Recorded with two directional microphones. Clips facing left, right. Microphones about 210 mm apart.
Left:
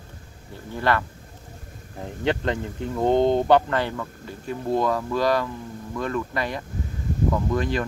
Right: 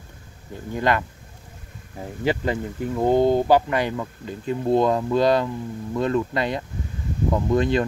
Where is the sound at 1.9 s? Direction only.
5° right (ahead or behind).